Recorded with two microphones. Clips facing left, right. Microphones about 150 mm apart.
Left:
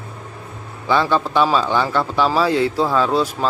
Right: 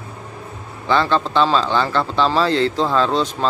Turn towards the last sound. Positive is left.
turn(degrees=5)  # may be behind; listen again after turning